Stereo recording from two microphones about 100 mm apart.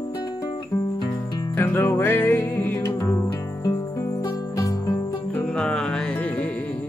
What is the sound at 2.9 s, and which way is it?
Music, 35° left (ahead or behind).